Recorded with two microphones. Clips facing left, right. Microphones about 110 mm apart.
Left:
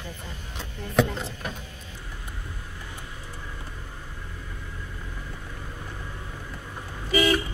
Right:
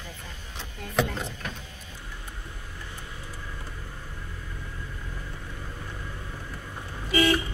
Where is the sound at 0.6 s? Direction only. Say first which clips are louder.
Left 4 dB; centre (ahead or behind).